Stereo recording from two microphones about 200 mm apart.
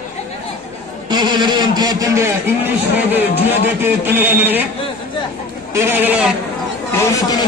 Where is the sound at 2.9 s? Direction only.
10° right (ahead or behind).